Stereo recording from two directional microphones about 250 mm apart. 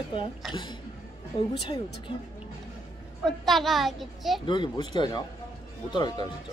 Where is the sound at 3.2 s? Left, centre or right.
Centre.